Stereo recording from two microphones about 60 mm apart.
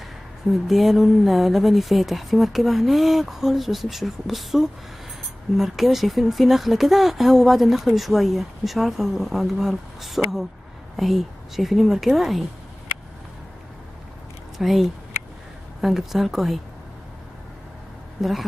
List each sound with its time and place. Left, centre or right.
0.5 s speech: centre
14.6 s speech: centre